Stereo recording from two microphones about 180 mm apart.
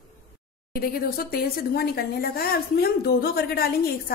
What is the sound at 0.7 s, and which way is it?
Speech, 55° left (ahead or behind).